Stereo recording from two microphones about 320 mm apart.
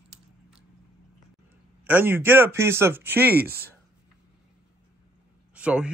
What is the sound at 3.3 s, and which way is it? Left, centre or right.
Speech, right.